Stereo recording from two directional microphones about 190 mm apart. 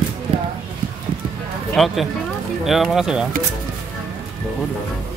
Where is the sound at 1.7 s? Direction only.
Centre (ahead or behind).